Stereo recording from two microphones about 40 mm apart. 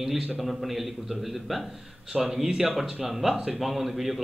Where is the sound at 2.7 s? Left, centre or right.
Centre.